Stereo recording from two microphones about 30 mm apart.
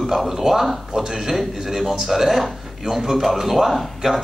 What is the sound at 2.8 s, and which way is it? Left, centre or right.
Speech, centre.